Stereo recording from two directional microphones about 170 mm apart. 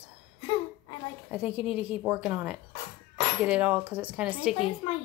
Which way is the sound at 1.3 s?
5° right (ahead or behind).